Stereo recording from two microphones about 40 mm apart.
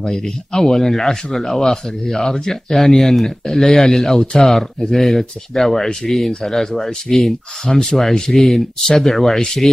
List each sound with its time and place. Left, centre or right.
0.0 s speech: centre